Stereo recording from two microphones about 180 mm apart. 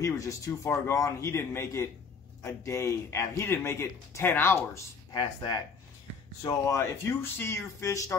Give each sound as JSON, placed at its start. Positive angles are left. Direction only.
{"t": 0.0, "sound": "speech", "side_deg": 15}
{"t": 5.1, "sound": "speech", "side_deg": 25}